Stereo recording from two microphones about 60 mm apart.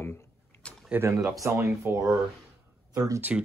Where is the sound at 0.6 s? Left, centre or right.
Centre.